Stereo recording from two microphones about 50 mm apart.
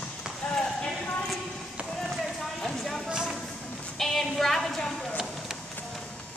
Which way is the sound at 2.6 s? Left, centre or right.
Centre.